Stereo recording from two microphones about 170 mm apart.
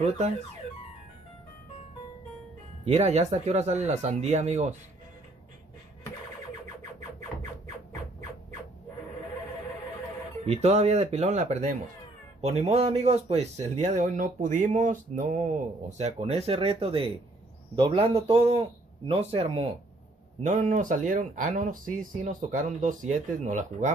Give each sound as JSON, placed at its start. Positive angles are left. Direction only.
{"t": 2.8, "sound": "speech", "side_deg": -40}
{"t": 10.4, "sound": "a man's voice", "side_deg": -40}
{"t": 20.4, "sound": "a man's voice", "side_deg": -50}